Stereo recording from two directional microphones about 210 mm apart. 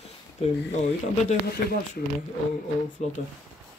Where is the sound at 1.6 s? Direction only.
45° left (ahead or behind).